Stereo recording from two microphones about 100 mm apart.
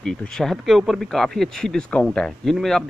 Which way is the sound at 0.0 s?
5° left (ahead or behind).